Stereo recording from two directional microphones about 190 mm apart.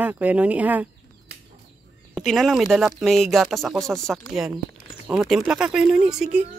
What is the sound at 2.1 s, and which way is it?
Speech, centre (ahead or behind).